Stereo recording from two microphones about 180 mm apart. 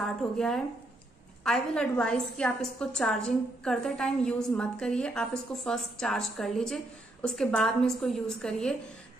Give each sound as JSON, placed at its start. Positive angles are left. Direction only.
{"t": 0.0, "sound": "a woman's voice", "side_deg": 5}